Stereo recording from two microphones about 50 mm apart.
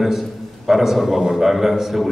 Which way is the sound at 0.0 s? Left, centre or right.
Centre.